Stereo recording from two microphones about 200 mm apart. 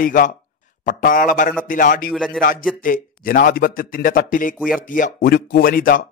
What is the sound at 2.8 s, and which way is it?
A man's voice, 45° left (ahead or behind).